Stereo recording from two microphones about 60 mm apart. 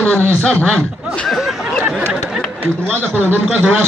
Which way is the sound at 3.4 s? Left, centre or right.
Centre.